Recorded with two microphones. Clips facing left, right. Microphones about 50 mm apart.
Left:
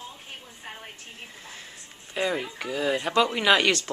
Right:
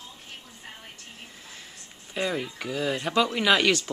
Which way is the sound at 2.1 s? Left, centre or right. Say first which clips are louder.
Left 1 dB; centre.